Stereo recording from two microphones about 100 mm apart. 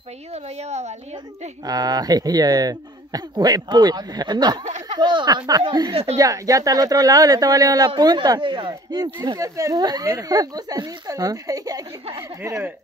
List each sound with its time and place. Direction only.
0.3 s a woman's voice: 90° right
1.7 s speech: 40° right (ahead or behind)
6.1 s speech: 35° right (ahead or behind)